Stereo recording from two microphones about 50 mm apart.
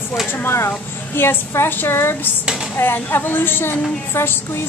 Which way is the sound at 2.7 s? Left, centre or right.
Left.